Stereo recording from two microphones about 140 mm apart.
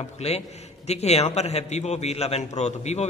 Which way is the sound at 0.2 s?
50° left (ahead or behind).